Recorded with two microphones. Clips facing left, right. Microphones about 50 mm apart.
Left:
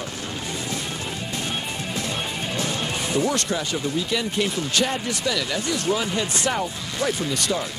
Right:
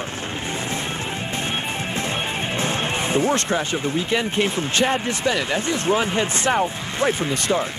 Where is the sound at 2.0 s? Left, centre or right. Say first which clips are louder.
Right 3 dB; right.